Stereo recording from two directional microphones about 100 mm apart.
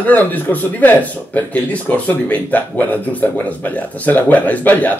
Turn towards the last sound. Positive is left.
turn(degrees=15)  # may be behind; listen again after turning